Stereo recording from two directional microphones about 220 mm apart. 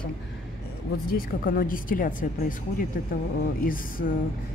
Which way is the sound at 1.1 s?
40° left (ahead or behind).